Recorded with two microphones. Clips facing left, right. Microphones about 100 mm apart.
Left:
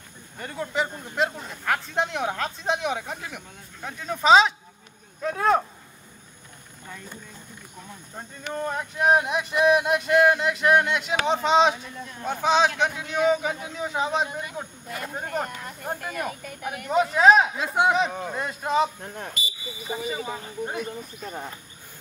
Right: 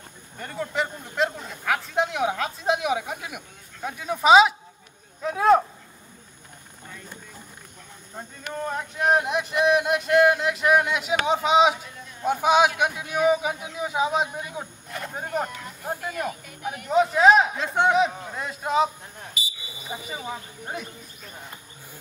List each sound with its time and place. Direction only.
0.4 s speech: centre (ahead or behind)
8.5 s speech: centre (ahead or behind)
21.2 s speech: 45° left (ahead or behind)